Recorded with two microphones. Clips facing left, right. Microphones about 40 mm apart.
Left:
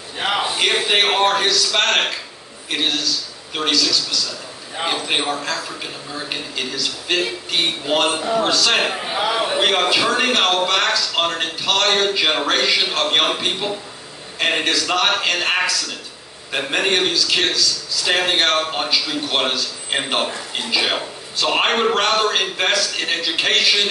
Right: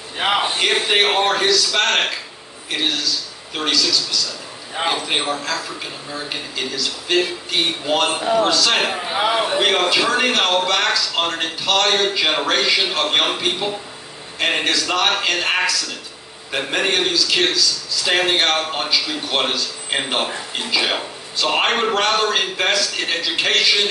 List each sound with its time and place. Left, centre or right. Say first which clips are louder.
0.2 s a man's voice: right 2 dB; centre
0.6 s a man's voice: even; centre
9.2 s a man's voice: right 2 dB; centre
9.5 s a man's voice: even; centre